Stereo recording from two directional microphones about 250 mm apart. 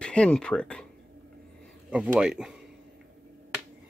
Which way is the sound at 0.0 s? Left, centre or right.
Centre.